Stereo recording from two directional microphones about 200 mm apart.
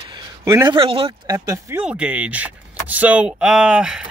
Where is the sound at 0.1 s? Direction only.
20° right (ahead or behind).